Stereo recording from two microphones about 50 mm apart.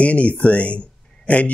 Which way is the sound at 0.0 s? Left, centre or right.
Left.